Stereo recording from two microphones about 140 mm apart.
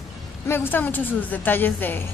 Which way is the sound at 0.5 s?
15° left (ahead or behind).